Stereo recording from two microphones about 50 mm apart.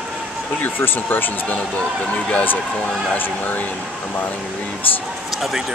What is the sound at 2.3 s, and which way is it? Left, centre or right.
Speech, left.